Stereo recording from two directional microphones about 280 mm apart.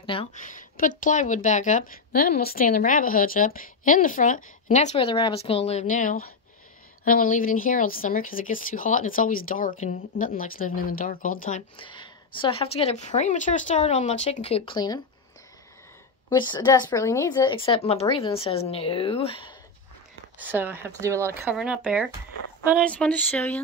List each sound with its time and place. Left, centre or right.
0.0 s speech: centre
16.3 s speech: centre
20.3 s speech: centre